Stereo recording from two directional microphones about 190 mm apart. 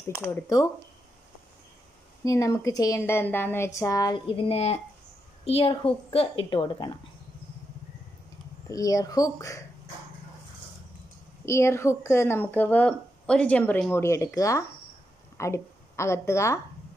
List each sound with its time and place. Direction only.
0.3 s speech: 15° left (ahead or behind)
2.2 s a woman's voice: 15° left (ahead or behind)
8.6 s speech: 20° left (ahead or behind)
11.4 s a woman's voice: 15° left (ahead or behind)